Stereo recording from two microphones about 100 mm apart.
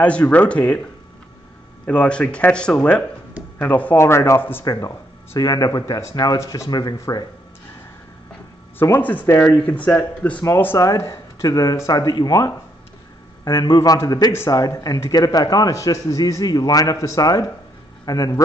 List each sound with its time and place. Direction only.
0.0 s speech: 15° left (ahead or behind)
1.9 s speech: 10° left (ahead or behind)
4.6 s speech: 35° left (ahead or behind)
8.7 s speech: 20° left (ahead or behind); by 12.5 s 40° left (ahead or behind)
13.6 s a man's voice: 40° left (ahead or behind)